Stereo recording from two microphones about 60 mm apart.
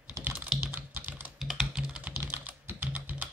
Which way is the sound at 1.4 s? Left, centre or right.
Centre.